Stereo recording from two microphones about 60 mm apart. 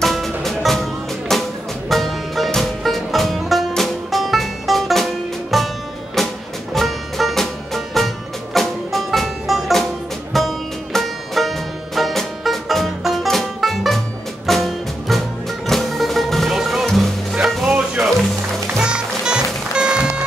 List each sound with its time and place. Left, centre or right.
0.0 s music: centre